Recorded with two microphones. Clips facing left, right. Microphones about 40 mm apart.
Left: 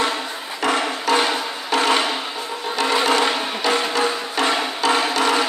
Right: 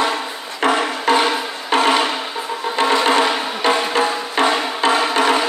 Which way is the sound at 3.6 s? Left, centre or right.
Right.